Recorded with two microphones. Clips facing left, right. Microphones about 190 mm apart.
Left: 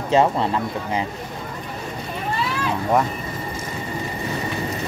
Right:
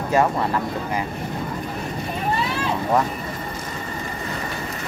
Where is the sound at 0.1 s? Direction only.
25° left (ahead or behind).